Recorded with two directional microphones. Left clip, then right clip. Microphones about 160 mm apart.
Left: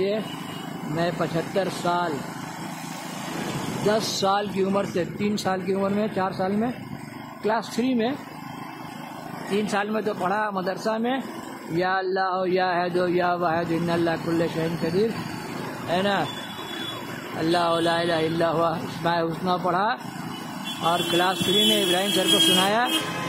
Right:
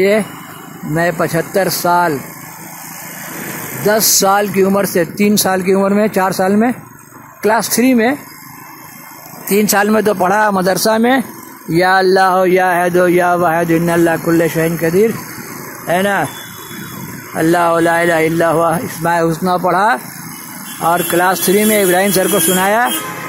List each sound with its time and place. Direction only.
0.9 s speech: 55° right (ahead or behind)
3.8 s speech: 50° right (ahead or behind)
9.7 s speech: 60° right (ahead or behind); by 16.3 s 35° right (ahead or behind)
17.4 s speech: 45° right (ahead or behind)